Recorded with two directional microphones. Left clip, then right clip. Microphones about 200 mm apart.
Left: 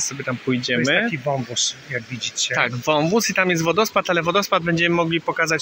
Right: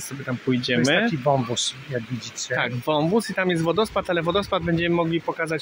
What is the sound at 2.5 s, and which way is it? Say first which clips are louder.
Speech: left 2 dB; 10° right (ahead or behind).